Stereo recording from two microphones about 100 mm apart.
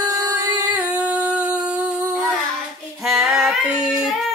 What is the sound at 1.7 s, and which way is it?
Humming, 10° right (ahead or behind).